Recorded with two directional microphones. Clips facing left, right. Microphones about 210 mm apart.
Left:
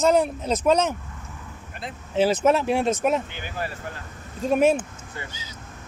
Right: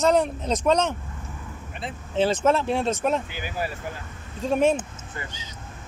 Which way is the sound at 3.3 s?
5° right (ahead or behind).